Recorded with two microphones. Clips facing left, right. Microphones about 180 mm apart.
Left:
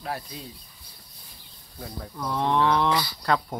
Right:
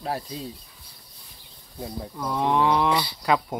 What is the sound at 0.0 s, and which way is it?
Speech, 30° right (ahead or behind).